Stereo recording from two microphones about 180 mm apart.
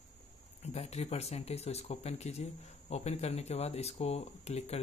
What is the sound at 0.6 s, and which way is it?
Speech, 35° left (ahead or behind).